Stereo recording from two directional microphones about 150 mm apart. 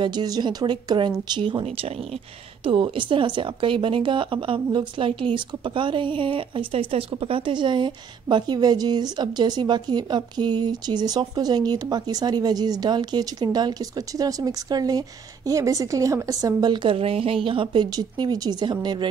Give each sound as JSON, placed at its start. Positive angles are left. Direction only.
{"t": 0.0, "sound": "speech", "side_deg": -30}